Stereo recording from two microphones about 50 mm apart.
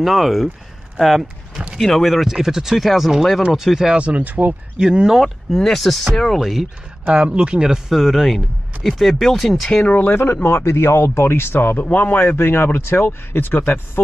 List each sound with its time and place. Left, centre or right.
0.0 s speech: centre
3.9 s speech: right
4.7 s speech: centre
5.2 s speech: centre
7.1 s speech: right
7.9 s speech: centre
9.7 s speech: left
10.0 s speech: left